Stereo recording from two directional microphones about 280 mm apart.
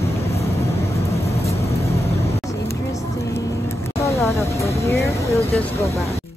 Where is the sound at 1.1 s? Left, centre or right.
Left.